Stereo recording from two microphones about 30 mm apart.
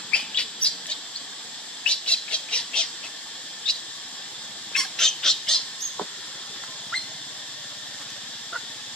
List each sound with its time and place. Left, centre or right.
0.3 s bird: left
1.9 s frog: left
3.7 s a sound: left
4.7 s bird: centre